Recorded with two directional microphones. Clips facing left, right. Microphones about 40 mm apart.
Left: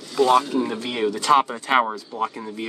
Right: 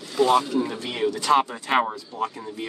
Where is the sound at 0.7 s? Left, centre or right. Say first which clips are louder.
Left 2 dB; left.